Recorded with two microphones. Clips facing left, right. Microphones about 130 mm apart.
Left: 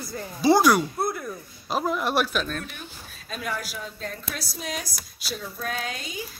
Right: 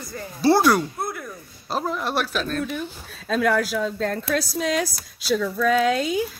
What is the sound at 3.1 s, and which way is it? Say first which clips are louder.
A woman's voice: right 11 dB; 90° right.